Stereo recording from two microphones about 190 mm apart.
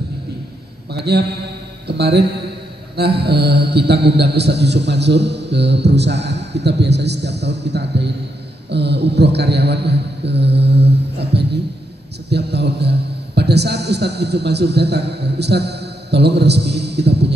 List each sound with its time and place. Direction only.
0.9 s a man's voice: 60° right (ahead or behind)